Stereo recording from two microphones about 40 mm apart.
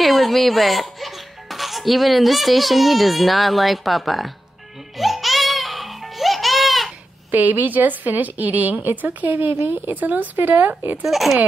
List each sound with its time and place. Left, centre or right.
0.0 s a child's voice: centre
4.9 s music: centre
7.2 s a woman's voice: right
11.1 s speech: centre